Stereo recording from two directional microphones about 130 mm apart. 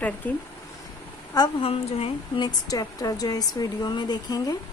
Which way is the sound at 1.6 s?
45° left (ahead or behind).